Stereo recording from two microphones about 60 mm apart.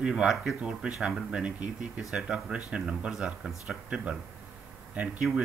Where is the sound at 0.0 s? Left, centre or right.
Centre.